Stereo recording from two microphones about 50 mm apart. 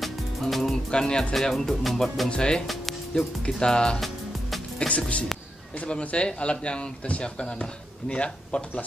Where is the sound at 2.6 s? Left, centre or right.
Centre.